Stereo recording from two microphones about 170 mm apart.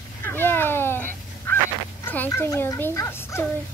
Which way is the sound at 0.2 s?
15° left (ahead or behind).